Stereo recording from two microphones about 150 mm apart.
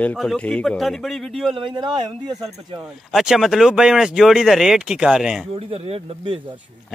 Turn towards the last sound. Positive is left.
turn(degrees=-35)  # may be behind; listen again after turning